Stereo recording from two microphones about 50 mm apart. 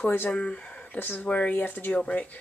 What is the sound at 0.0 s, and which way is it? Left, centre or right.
Speech, left.